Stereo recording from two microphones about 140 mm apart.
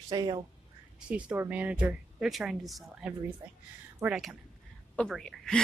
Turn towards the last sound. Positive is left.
turn(degrees=5)  # may be behind; listen again after turning